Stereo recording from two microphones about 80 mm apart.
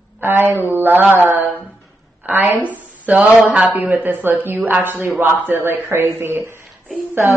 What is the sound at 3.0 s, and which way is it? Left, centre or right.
A man's voice, right.